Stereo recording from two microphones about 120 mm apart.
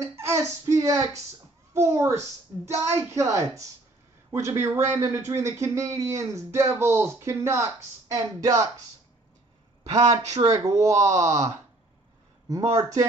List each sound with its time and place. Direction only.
0.0 s speech: 25° right (ahead or behind)
9.8 s speech: 70° right (ahead or behind)
10.4 s speech: 30° right (ahead or behind)